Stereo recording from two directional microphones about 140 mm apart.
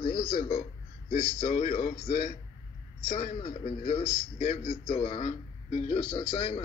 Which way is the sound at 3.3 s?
45° left (ahead or behind).